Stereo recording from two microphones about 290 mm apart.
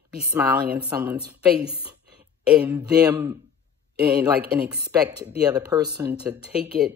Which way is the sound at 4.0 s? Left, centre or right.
Right.